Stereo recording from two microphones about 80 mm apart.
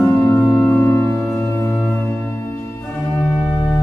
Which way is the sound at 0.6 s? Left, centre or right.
Left.